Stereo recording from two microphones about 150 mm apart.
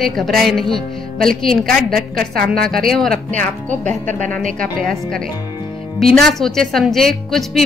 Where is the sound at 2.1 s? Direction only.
80° right.